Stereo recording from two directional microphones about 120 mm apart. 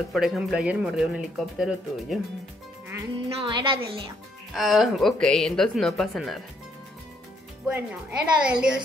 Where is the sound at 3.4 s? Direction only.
40° right (ahead or behind).